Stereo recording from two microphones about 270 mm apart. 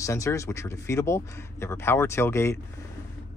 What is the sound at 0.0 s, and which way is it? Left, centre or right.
Speech, centre.